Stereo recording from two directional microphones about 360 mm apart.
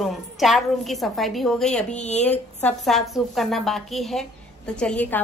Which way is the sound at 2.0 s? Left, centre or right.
Centre.